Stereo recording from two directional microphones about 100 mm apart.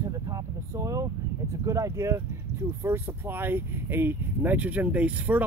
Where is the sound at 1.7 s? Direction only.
35° right (ahead or behind).